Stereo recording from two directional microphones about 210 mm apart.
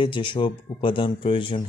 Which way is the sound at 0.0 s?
25° left (ahead or behind).